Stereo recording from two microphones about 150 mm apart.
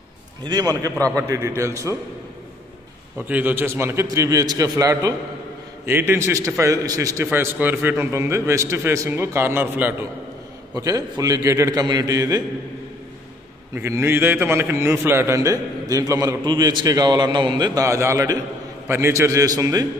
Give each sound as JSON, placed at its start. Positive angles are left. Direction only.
{"t": 0.4, "sound": "a man's voice", "side_deg": -30}
{"t": 3.2, "sound": "a man's voice", "side_deg": -10}
{"t": 7.2, "sound": "a man's voice", "side_deg": -10}
{"t": 10.7, "sound": "a man's voice", "side_deg": -25}
{"t": 13.7, "sound": "a man's voice", "side_deg": -20}